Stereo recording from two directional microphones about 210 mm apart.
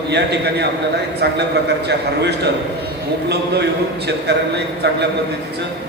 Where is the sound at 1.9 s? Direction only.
55° right (ahead or behind).